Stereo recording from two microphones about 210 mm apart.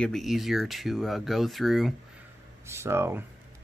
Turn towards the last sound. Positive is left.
turn(degrees=-10)  # may be behind; listen again after turning